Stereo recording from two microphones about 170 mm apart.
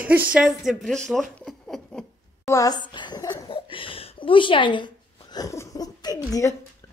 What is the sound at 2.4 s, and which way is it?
Speech, 20° left (ahead or behind).